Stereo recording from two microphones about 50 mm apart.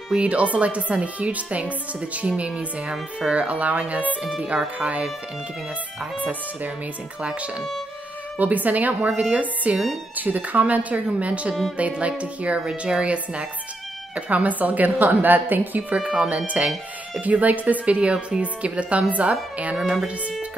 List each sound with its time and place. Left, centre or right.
0.1 s a woman's voice: right
7.2 s a woman's voice: centre
8.4 s a woman's voice: right
16.1 s a woman's voice: right
17.8 s a woman's voice: right
19.8 s speech: centre